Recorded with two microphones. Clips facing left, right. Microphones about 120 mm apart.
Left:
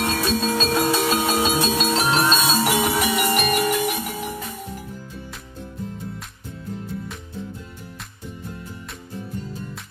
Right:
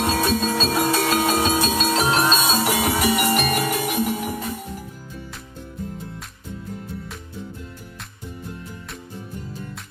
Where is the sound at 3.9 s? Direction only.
15° right (ahead or behind).